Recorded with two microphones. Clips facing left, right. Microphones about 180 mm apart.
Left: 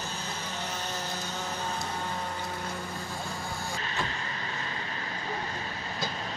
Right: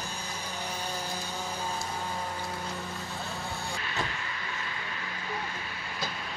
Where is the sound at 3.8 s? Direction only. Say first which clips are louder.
Left 1 dB; 35° left (ahead or behind).